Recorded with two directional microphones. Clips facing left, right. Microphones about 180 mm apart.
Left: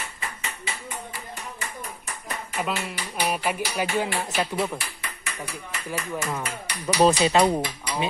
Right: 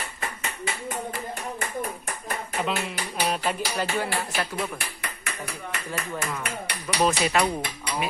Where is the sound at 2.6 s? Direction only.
Centre (ahead or behind).